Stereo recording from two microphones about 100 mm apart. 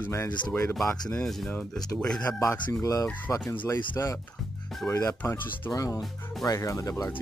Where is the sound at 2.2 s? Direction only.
30° left (ahead or behind).